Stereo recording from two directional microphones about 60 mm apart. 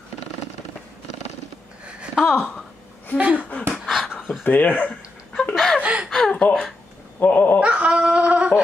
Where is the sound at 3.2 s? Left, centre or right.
Right.